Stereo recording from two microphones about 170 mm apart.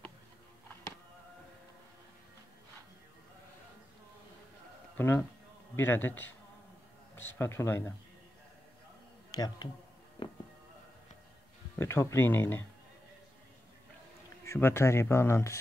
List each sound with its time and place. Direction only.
4.9 s speech: 15° left (ahead or behind)
9.3 s speech: 20° left (ahead or behind)
10.2 s music: 25° left (ahead or behind)
11.8 s speech: 15° left (ahead or behind)
14.4 s speech: 15° left (ahead or behind)